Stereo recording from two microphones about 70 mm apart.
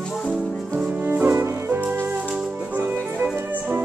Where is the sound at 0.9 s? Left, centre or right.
Right.